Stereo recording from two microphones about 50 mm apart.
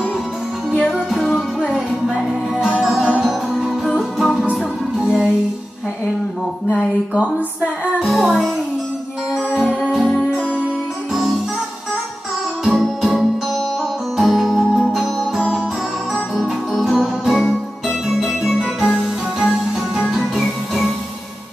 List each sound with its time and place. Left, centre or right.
2.1 s music: centre
4.2 s music: centre
4.9 s music: centre
7.2 s speech: right
8.0 s music: centre
9.8 s music: centre
12.6 s music: centre
16.8 s music: centre
20.3 s music: centre